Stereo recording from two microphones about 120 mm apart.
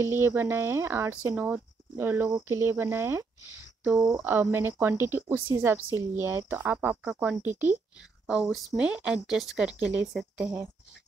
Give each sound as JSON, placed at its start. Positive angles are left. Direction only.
{"t": 0.0, "sound": "speech", "side_deg": -20}
{"t": 8.3, "sound": "speech", "side_deg": -5}